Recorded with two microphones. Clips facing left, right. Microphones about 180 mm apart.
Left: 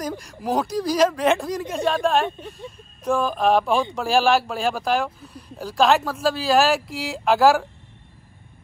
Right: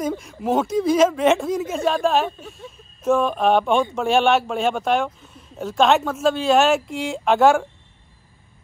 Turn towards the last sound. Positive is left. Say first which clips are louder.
# right 1 dB
turn(degrees=0)  # may be behind; listen again after turning